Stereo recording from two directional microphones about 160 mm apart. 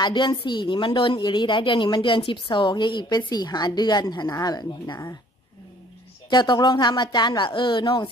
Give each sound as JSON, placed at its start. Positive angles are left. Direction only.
{"t": 0.0, "sound": "a woman's voice", "side_deg": 30}
{"t": 6.3, "sound": "a woman's voice", "side_deg": 25}